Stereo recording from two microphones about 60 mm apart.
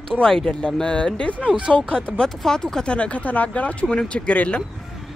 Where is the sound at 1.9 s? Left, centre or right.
Centre.